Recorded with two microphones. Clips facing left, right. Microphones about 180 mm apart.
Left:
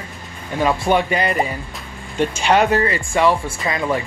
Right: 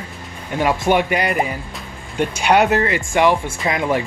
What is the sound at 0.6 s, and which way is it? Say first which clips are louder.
Speech: even; 10° right (ahead or behind).